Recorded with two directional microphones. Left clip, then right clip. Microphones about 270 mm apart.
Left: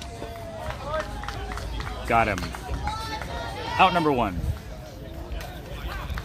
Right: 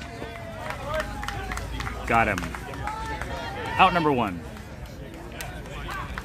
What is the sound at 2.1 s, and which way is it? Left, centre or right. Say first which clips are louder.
Speech: even; centre.